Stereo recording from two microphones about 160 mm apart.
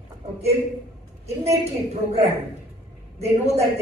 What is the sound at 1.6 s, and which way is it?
A woman's voice, 40° right (ahead or behind).